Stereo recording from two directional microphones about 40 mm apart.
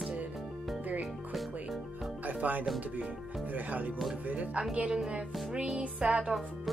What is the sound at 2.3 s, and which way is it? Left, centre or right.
Speech, right.